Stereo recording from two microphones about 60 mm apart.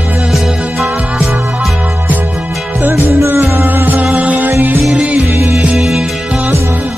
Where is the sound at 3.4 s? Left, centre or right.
Right.